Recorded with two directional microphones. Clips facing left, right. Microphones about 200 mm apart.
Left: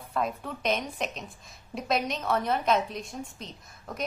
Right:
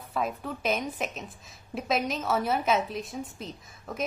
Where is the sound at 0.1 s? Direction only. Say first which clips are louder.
Even; centre (ahead or behind).